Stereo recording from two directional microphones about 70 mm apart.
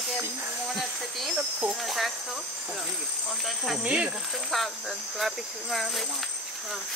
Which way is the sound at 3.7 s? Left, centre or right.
Centre.